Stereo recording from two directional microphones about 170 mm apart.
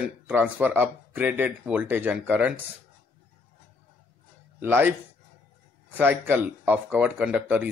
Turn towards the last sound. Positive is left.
turn(degrees=-10)  # may be behind; listen again after turning